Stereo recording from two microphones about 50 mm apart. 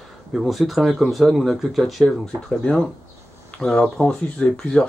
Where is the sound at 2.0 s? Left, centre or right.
Centre.